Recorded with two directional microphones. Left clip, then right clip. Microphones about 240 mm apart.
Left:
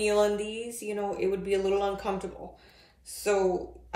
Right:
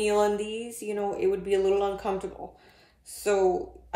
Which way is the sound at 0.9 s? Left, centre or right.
Centre.